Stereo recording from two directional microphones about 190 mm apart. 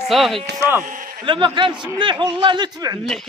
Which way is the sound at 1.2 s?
25° right (ahead or behind).